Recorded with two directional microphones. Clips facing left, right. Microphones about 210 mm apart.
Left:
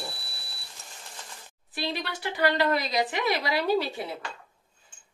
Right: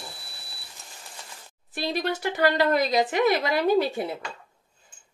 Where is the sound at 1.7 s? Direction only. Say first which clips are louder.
Right 5 dB; 45° right (ahead or behind).